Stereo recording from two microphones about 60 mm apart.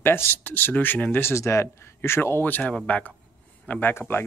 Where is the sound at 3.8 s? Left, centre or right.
Left.